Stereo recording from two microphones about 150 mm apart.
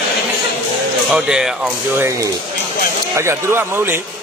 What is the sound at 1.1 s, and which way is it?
Speech, 5° right (ahead or behind).